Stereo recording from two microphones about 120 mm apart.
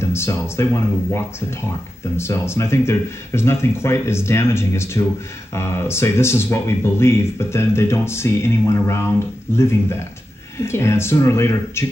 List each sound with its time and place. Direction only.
0.0 s speech: 20° left (ahead or behind)